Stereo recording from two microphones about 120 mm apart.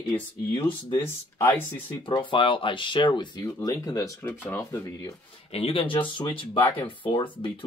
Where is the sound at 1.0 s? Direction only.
20° left (ahead or behind).